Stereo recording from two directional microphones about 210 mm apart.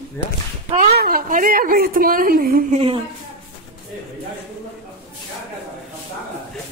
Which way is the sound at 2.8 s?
25° right (ahead or behind).